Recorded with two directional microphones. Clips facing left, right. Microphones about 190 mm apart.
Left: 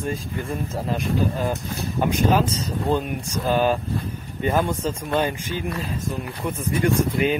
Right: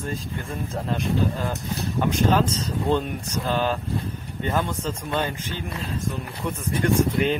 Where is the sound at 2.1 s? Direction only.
10° left (ahead or behind).